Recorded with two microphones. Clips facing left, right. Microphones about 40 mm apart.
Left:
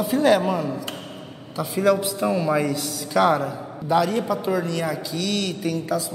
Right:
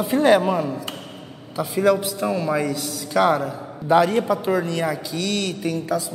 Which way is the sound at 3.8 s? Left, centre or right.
Right.